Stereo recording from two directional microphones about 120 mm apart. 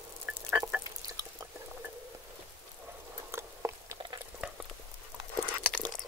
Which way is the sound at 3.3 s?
20° right (ahead or behind).